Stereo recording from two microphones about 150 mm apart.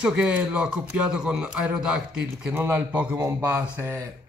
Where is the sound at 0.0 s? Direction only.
5° right (ahead or behind).